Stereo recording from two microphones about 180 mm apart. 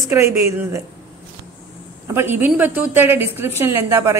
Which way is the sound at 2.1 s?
10° right (ahead or behind).